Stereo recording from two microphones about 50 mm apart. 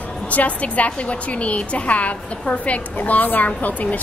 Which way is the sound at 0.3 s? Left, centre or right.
Left.